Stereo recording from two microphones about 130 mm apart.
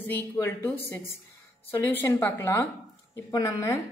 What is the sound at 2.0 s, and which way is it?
A woman's voice, 15° left (ahead or behind).